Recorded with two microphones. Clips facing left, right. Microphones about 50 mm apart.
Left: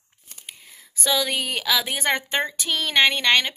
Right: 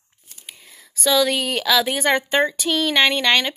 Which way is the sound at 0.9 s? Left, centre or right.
Centre.